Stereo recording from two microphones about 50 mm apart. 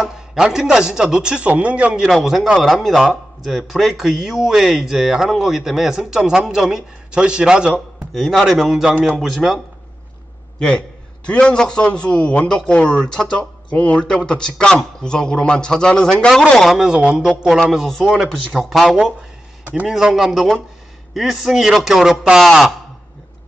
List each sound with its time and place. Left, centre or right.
0.0 s a man's voice: centre; by 2.0 s right
2.0 s a man's voice: centre
7.7 s speech: centre
11.2 s a man's voice: left
13.7 s a man's voice: left
16.8 s a man's voice: right
17.8 s a man's voice: centre
20.2 s speech: centre
21.1 s speech: centre
22.4 s speech: centre